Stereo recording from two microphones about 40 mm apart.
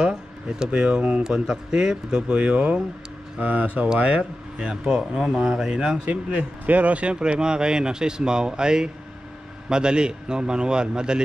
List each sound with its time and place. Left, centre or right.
0.0 s a sound: centre
0.7 s a man's voice: right
2.2 s speech: right
6.6 s speech: right